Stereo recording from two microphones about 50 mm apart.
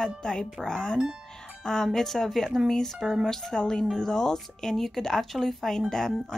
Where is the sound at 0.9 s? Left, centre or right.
Centre.